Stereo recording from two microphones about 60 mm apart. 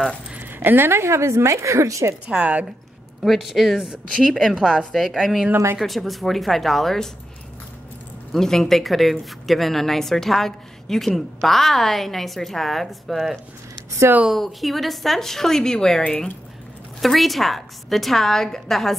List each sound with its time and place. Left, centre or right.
0.4 s a woman's voice: right
2.2 s speech: right
3.3 s a woman's voice: centre
4.1 s a woman's voice: centre
8.3 s a woman's voice: centre
17.0 s a woman's voice: centre